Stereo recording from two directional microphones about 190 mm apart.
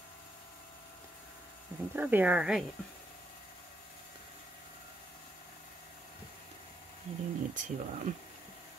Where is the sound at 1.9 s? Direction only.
10° right (ahead or behind).